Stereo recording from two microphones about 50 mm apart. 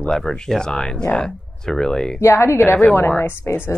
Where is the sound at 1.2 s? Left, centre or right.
Centre.